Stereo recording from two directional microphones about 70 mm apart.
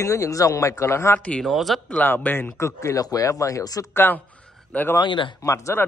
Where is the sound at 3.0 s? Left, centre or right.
Left.